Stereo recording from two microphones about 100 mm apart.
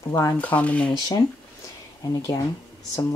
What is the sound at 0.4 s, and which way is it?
Speech, 15° left (ahead or behind).